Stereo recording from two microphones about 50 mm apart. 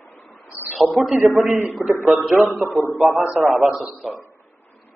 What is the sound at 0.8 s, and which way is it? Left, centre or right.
A man's voice, centre.